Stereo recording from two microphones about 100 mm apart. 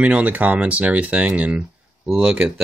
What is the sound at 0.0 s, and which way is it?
Speech, 15° right (ahead or behind).